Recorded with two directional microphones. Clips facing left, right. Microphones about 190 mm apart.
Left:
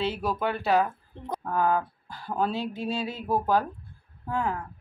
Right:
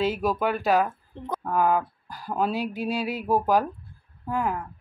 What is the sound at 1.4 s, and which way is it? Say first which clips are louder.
Speech: right 2 dB; 10° right (ahead or behind).